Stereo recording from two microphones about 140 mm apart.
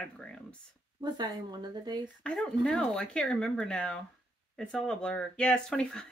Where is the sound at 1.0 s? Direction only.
30° right (ahead or behind).